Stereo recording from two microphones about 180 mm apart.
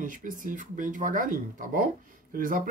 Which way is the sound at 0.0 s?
50° right (ahead or behind).